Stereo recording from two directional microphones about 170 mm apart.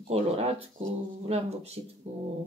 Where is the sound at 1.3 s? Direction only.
40° right (ahead or behind).